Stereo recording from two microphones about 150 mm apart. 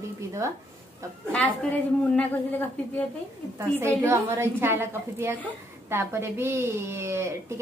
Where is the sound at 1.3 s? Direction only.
5° left (ahead or behind).